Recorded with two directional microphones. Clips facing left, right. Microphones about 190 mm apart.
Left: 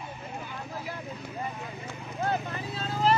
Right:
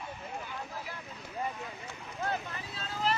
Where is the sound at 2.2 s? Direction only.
35° left (ahead or behind).